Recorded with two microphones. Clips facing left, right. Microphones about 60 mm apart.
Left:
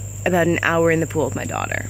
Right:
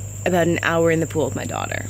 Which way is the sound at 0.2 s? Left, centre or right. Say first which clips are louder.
Left 1 dB; left.